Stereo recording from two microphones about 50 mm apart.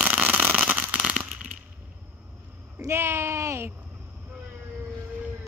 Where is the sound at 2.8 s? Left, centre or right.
Right.